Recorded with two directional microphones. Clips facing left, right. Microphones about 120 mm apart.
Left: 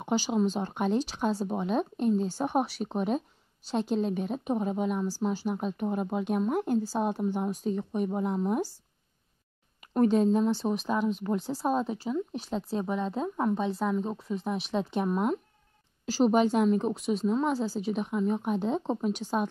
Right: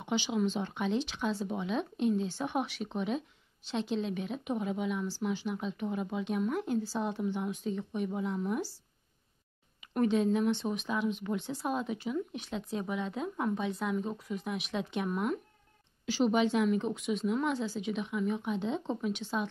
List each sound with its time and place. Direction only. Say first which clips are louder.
0.0 s speech: left 4 dB; 40° left (ahead or behind)
9.8 s a woman's voice: left 5 dB; 40° left (ahead or behind)
16.1 s speech: left 4 dB; 40° left (ahead or behind)